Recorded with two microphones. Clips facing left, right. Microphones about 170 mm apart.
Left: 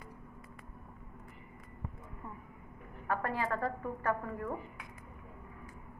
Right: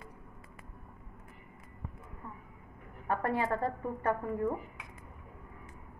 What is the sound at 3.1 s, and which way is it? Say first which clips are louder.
A woman's voice: right 3 dB; 25° right (ahead or behind).